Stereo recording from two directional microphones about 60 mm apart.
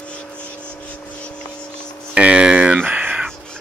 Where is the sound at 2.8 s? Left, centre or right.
Right.